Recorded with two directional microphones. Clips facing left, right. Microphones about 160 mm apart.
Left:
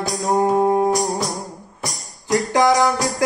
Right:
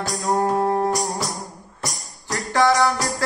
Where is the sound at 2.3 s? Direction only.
20° left (ahead or behind).